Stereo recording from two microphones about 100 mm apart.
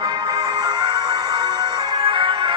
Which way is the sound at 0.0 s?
45° right (ahead or behind).